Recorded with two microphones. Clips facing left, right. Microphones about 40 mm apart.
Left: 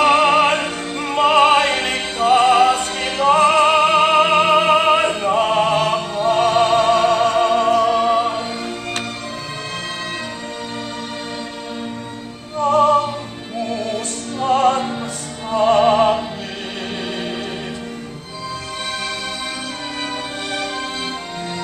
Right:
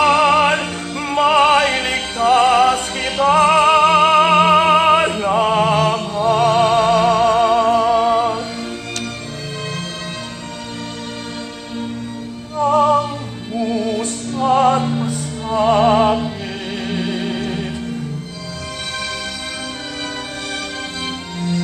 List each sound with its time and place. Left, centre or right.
0.0 s music: centre
2.2 s music: centre
3.2 s music: centre
8.1 s music: left
12.5 s music: centre